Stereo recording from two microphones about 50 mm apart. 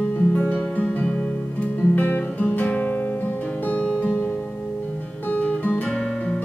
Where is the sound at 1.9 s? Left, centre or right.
Left.